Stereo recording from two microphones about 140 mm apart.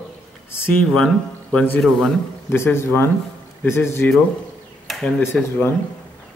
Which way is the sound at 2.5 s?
15° left (ahead or behind).